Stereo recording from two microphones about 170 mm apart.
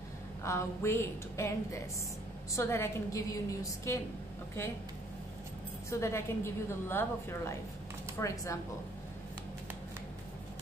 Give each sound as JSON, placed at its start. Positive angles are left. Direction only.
{"t": 0.4, "sound": "a woman's voice", "side_deg": 15}
{"t": 5.9, "sound": "a woman's voice", "side_deg": 15}